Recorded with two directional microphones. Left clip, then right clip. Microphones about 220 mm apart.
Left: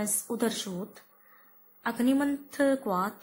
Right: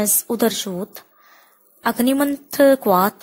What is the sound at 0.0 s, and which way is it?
A woman's voice, 40° right (ahead or behind).